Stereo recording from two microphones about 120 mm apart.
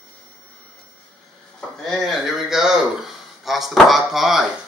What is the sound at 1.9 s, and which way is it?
Speech, centre (ahead or behind).